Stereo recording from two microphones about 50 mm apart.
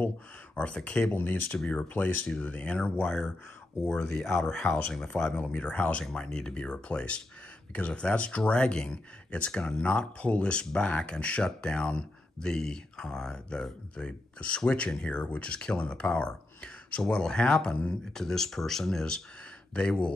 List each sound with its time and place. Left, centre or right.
0.6 s speech: left
1.0 s speech: left
2.0 s speech: left
3.8 s speech: centre
6.0 s speech: centre
19.7 s speech: left